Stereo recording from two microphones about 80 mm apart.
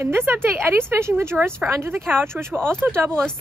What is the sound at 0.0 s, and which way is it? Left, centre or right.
Speech, right.